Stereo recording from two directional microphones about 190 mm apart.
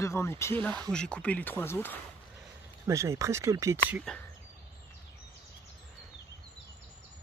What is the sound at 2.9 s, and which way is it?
Speech, 15° right (ahead or behind).